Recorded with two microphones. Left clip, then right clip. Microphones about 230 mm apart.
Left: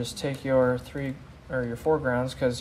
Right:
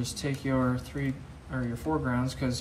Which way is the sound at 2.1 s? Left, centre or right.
Left.